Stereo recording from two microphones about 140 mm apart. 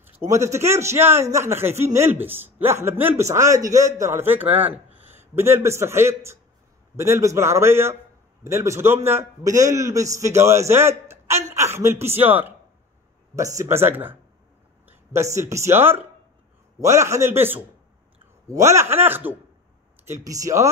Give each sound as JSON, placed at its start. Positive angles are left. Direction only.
{"t": 0.2, "sound": "a man's voice", "side_deg": -20}
{"t": 18.7, "sound": "a man's voice", "side_deg": -20}